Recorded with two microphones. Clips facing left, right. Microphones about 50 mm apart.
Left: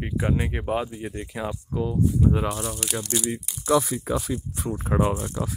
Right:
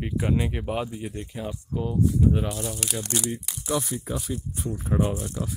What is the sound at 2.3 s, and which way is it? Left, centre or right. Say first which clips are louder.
Speech: left 1 dB; left.